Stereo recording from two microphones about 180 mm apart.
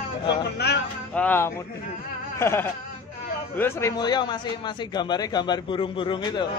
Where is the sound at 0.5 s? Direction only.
70° left (ahead or behind).